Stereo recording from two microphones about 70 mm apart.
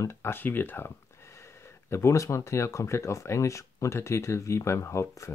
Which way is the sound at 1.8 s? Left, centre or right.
Left.